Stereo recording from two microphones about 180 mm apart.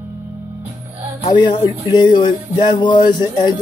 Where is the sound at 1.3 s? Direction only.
25° left (ahead or behind).